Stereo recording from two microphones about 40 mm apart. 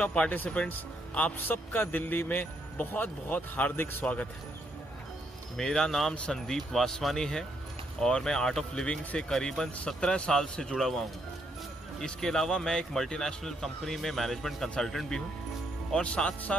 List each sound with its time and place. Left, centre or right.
0.0 s speech: left
0.6 s speech: left
1.5 s speech: left
5.6 s speech: centre
7.2 s speech: centre
8.8 s speech: left
9.3 s speech: centre
12.0 s speech: centre
15.9 s speech: left